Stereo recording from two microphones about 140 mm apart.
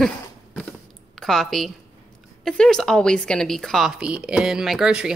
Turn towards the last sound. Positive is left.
turn(degrees=-5)  # may be behind; listen again after turning